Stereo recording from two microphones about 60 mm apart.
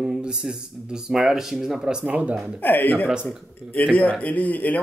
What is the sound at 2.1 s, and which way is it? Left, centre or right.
Speech, right.